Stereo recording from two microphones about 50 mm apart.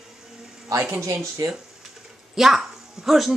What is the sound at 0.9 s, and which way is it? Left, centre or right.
Speech, right.